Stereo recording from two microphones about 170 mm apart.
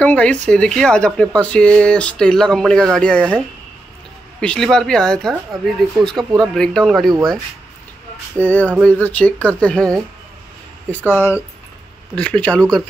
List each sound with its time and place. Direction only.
0.0 s speech: 10° left (ahead or behind)
4.4 s speech: 5° left (ahead or behind)
8.4 s speech: 10° left (ahead or behind)